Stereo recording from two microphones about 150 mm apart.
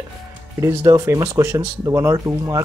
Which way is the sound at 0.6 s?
20° right (ahead or behind).